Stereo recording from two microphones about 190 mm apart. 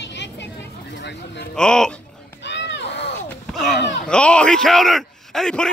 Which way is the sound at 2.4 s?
65° left (ahead or behind).